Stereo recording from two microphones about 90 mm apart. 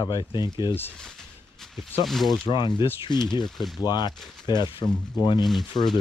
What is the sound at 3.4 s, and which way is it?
Speech, centre (ahead or behind).